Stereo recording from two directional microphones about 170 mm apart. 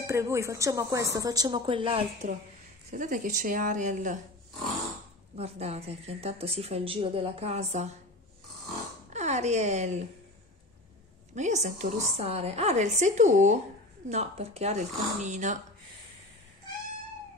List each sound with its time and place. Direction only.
0.0 s speech: 15° right (ahead or behind); by 2.0 s 30° right (ahead or behind)
2.9 s a woman's voice: 50° right (ahead or behind)
5.3 s speech: 40° right (ahead or behind)
9.1 s speech: 40° right (ahead or behind)
11.3 s a woman's voice: 45° right (ahead or behind)